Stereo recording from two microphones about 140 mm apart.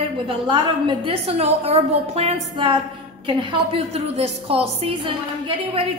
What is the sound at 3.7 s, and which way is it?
A woman's voice, 50° right (ahead or behind).